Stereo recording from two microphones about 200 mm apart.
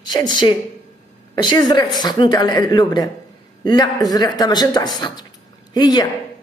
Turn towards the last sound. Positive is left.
turn(degrees=20)  # may be behind; listen again after turning